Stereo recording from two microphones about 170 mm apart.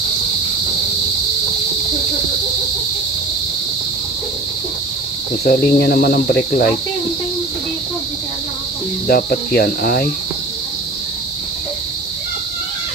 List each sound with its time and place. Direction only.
5.4 s speech: 65° left (ahead or behind)
9.0 s speech: 60° left (ahead or behind)